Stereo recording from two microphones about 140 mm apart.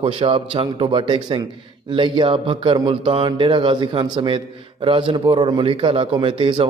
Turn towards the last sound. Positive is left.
turn(degrees=-40)  # may be behind; listen again after turning